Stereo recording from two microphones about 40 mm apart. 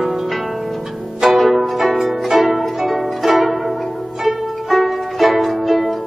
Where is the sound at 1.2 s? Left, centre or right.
Centre.